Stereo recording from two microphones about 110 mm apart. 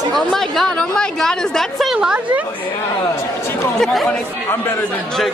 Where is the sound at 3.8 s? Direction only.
5° left (ahead or behind).